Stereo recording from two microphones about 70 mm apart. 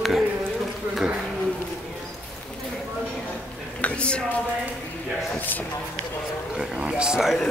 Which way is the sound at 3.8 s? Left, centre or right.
Centre.